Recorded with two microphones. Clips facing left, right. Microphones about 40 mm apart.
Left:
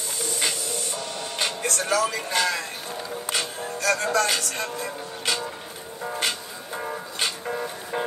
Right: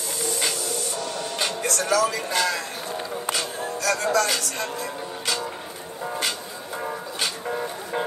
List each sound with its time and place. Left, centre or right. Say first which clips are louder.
0.4 s printer: right 1 dB; left
1.4 s speech: even; left
3.8 s speech: even; left